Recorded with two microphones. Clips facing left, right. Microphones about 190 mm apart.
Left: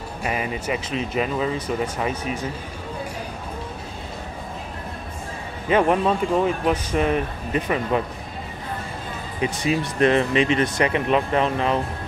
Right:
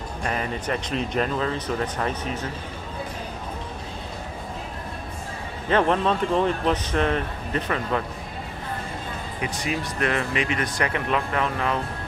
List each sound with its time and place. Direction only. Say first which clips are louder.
0.2 s speech: left 2 dB; 10° left (ahead or behind)
5.7 s speech: left 2 dB; 10° left (ahead or behind)
9.4 s speech: left 6 dB; 25° left (ahead or behind)